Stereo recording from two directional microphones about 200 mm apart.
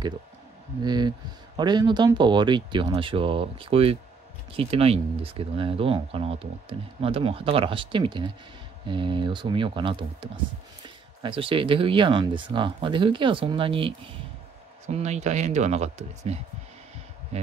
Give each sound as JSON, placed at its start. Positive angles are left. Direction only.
{"t": 0.8, "sound": "speech", "side_deg": -20}